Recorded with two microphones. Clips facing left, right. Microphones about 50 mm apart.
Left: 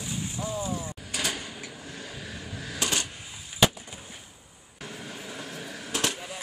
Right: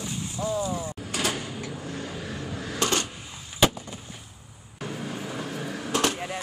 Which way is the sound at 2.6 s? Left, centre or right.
Centre.